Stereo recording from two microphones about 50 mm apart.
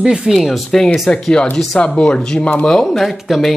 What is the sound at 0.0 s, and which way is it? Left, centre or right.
Speech, centre.